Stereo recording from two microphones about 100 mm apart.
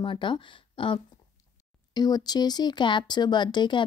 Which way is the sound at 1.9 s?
40° left (ahead or behind).